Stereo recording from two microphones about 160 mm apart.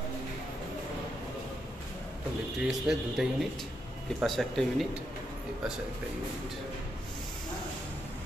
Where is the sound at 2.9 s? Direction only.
5° right (ahead or behind).